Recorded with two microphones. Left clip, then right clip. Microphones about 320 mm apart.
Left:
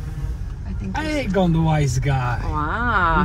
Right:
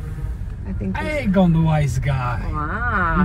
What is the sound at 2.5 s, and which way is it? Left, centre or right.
Speech, centre.